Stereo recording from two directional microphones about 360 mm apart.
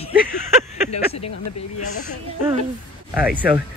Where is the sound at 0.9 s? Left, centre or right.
Centre.